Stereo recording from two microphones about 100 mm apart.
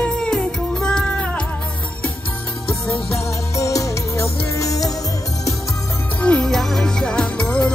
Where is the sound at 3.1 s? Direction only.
30° left (ahead or behind).